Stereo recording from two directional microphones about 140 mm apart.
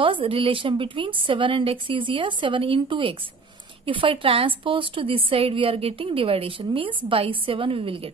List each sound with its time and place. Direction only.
0.0 s a woman's voice: 40° right (ahead or behind)